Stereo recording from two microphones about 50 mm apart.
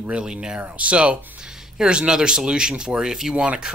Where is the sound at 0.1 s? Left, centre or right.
Centre.